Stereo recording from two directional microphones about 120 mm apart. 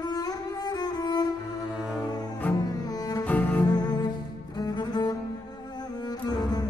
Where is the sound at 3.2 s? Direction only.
10° left (ahead or behind).